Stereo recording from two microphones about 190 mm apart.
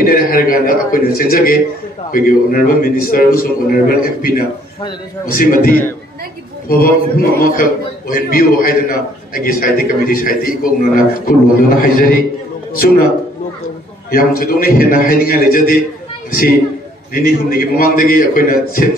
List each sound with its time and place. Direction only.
0.0 s a man's voice: 50° left (ahead or behind)
14.1 s a man's voice: 50° left (ahead or behind)